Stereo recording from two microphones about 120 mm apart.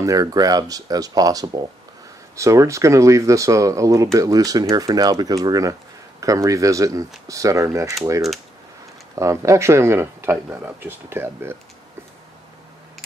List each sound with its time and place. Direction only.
0.0 s speech: 30° right (ahead or behind)
9.1 s speech: 25° right (ahead or behind)